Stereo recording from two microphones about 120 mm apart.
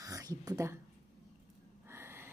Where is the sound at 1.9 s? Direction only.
20° right (ahead or behind).